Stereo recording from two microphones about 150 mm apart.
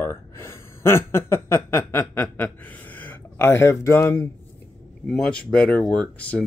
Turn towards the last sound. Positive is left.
turn(degrees=10)  # may be behind; listen again after turning